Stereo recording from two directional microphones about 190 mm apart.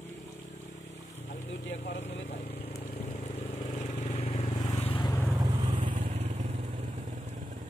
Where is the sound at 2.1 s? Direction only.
55° left (ahead or behind).